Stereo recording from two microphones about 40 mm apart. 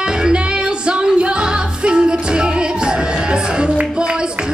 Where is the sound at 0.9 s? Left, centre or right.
Right.